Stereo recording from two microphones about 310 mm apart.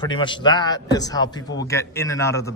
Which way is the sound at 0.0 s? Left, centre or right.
Centre.